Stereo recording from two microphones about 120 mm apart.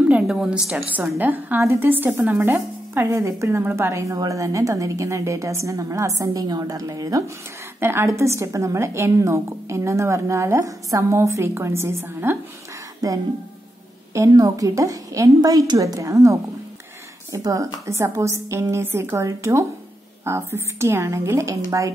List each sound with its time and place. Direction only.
0.3 s a woman's voice: 5° right (ahead or behind)
1.1 s speech: 15° right (ahead or behind)